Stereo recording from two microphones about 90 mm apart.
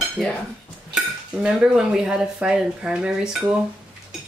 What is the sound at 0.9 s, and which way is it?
Dishes, 10° right (ahead or behind).